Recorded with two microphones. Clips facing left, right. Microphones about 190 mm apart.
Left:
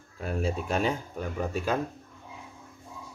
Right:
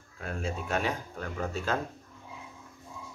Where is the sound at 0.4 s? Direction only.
30° left (ahead or behind).